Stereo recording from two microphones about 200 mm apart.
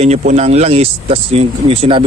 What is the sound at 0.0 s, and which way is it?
Speech, 30° right (ahead or behind).